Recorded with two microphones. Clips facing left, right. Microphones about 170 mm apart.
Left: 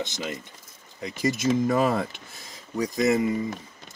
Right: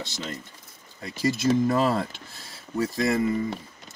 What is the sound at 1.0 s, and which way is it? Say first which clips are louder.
Speech: right 1 dB; 20° left (ahead or behind).